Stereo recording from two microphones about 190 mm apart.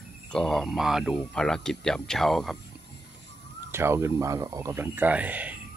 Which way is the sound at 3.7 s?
15° right (ahead or behind).